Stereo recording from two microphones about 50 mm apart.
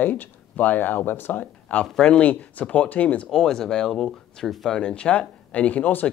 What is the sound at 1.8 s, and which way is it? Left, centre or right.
Speech, centre.